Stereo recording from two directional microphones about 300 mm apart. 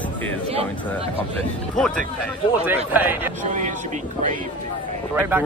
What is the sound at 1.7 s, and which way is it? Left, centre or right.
Speech, centre.